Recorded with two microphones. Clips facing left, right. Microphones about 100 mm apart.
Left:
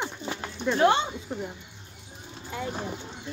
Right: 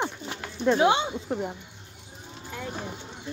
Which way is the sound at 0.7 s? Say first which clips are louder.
Even; 15° right (ahead or behind).